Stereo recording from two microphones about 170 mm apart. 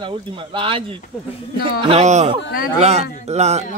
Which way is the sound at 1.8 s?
40° right (ahead or behind).